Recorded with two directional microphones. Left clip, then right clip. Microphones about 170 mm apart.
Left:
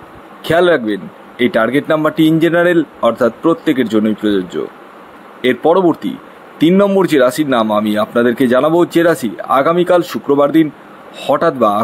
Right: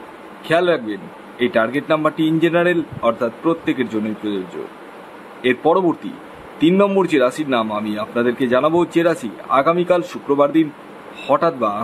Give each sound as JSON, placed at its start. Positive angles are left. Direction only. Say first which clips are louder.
{"t": 0.4, "sound": "a man's voice", "louder": "left 5 dB", "side_deg": 35}
{"t": 5.4, "sound": "a man's voice", "louder": "left 4 dB", "side_deg": 30}